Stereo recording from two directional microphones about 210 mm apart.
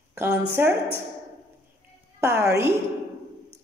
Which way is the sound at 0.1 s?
10° right (ahead or behind).